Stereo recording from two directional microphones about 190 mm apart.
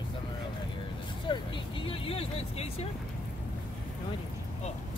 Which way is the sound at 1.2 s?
25° left (ahead or behind).